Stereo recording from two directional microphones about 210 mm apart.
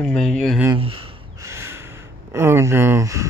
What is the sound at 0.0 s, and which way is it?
Speech, 5° left (ahead or behind).